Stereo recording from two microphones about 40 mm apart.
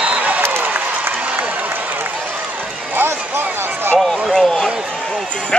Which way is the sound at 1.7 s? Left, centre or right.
Right.